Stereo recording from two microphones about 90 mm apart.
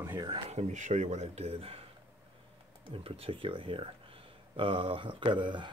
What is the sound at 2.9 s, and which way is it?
Speech, 90° right.